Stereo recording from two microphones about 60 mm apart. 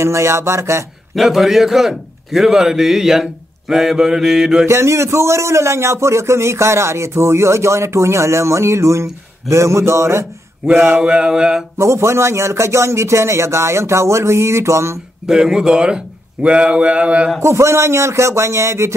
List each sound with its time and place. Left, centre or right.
0.0 s a man's voice: right
1.1 s a man's voice: centre
4.6 s a man's voice: right
11.0 s a man's voice: centre
11.8 s a man's voice: right
15.2 s a man's voice: centre
17.4 s a man's voice: right